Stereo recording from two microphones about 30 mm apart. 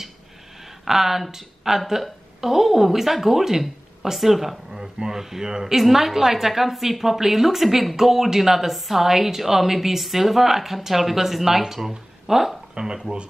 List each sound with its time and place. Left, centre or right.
0.8 s a woman's voice: centre
5.8 s a woman's voice: centre
12.7 s speech: right